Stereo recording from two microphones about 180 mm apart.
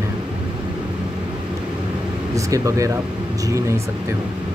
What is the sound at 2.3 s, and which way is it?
Speech, 20° right (ahead or behind).